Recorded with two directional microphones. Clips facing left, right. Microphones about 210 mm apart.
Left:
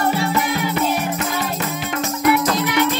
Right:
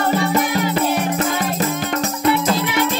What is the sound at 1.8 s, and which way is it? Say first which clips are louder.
Music: left 4 dB; 35° right (ahead or behind).